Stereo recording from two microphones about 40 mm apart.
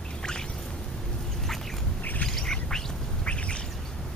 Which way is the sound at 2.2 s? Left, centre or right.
Centre.